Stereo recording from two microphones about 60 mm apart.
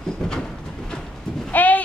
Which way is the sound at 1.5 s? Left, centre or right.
Left.